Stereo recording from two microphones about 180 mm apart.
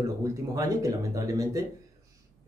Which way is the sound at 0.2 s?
20° right (ahead or behind).